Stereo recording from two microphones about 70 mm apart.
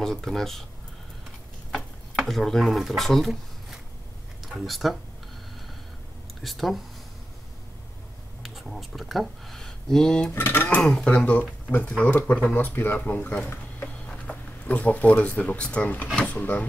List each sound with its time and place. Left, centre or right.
0.0 s speech: centre
2.1 s speech: centre
6.4 s speech: centre
8.4 s speech: centre
10.3 s speech: left
10.8 s speech: centre